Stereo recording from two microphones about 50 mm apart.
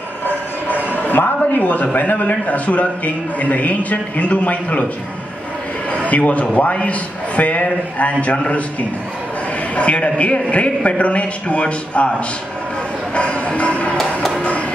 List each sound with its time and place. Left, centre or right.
0.9 s a sound: left
1.5 s a man's voice: left
5.9 s a man's voice: left
9.8 s a man's voice: left
13.1 s music: left
13.9 s music: centre